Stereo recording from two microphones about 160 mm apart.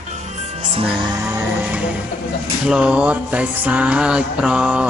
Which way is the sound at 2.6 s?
5° right (ahead or behind).